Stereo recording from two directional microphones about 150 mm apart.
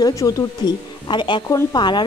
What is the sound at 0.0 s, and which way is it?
Speech, 25° left (ahead or behind).